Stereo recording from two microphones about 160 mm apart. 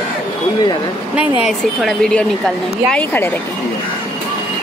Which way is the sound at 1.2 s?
5° right (ahead or behind).